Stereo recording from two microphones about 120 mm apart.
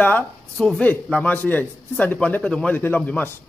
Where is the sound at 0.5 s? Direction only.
5° left (ahead or behind).